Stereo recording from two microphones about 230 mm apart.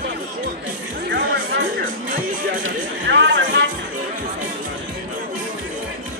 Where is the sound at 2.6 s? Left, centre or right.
Right.